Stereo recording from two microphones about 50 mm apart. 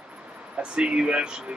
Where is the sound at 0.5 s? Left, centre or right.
Centre.